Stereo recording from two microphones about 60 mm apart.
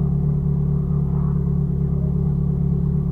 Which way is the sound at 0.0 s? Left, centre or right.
Centre.